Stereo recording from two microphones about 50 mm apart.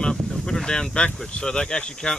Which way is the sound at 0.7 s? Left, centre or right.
Centre.